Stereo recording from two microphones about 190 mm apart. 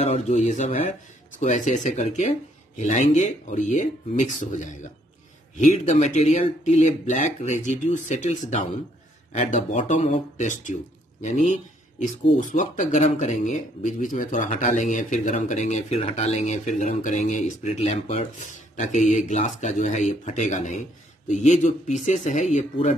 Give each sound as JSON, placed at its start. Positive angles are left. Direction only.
{"t": 0.0, "sound": "speech", "side_deg": 35}